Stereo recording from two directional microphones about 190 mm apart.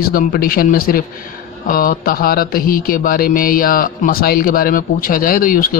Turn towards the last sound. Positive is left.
turn(degrees=50)  # may be behind; listen again after turning